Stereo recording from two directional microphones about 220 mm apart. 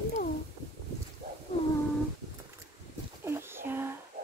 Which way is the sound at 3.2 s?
10° right (ahead or behind).